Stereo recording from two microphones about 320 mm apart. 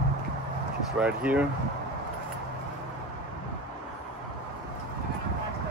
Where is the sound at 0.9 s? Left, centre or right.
Centre.